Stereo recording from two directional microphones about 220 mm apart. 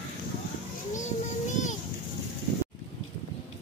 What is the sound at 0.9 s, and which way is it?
Child singing, 35° left (ahead or behind).